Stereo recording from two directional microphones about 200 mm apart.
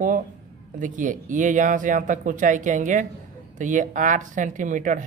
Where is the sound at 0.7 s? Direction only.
40° right (ahead or behind).